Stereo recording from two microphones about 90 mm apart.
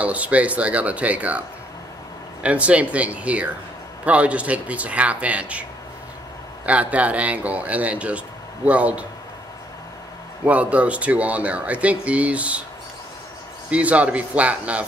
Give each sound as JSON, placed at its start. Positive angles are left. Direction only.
{"t": 0.0, "sound": "speech", "side_deg": -15}
{"t": 2.4, "sound": "speech", "side_deg": -15}
{"t": 10.4, "sound": "speech", "side_deg": -15}
{"t": 13.7, "sound": "speech", "side_deg": -15}